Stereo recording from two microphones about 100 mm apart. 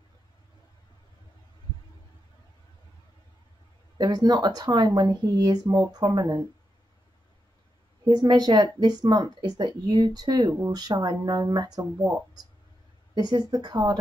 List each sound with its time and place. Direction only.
4.0 s speech: 45° right (ahead or behind)
8.1 s speech: 40° right (ahead or behind)